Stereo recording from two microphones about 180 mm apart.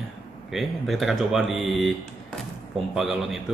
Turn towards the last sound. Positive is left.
turn(degrees=0)  # may be behind; listen again after turning